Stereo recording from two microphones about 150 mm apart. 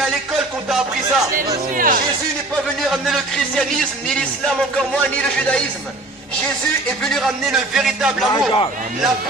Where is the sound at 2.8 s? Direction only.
Centre (ahead or behind).